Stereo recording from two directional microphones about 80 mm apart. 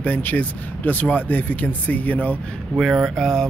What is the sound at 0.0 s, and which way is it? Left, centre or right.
Speech, left.